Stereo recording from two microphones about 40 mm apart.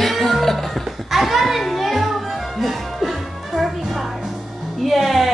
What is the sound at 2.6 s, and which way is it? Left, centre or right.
Music, centre.